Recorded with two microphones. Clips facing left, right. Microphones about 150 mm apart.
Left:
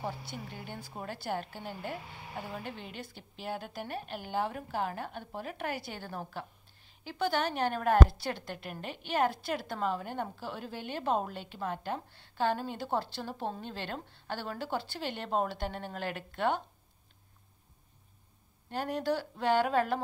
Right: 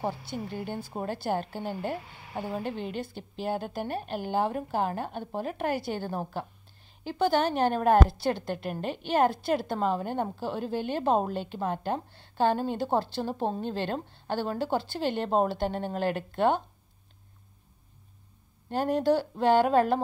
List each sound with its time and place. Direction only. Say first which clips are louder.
0.7 s a woman's voice: right 8 dB; 35° right (ahead or behind)
18.7 s a woman's voice: right 7 dB; 30° right (ahead or behind)